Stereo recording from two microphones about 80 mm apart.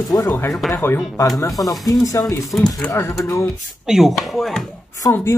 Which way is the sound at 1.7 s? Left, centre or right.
Left.